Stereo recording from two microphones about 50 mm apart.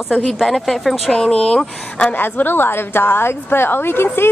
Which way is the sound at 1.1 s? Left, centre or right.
Centre.